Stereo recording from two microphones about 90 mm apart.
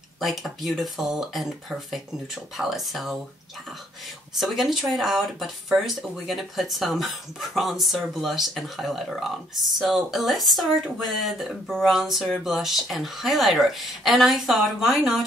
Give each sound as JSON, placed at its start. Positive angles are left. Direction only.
{"t": 0.2, "sound": "speech", "side_deg": 0}
{"t": 4.4, "sound": "speech", "side_deg": -5}